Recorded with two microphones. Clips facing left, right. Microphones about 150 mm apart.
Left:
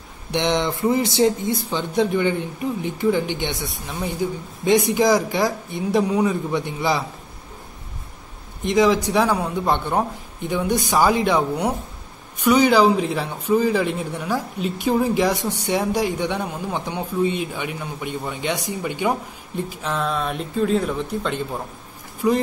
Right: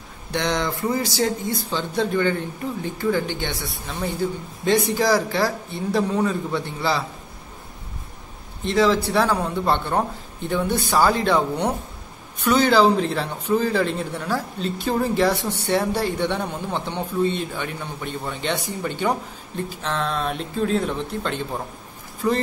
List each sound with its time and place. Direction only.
0.3 s a sound: 20° left (ahead or behind)
0.8 s speech: 25° left (ahead or behind)
8.6 s speech: 15° left (ahead or behind)
22.2 s speech: 10° left (ahead or behind)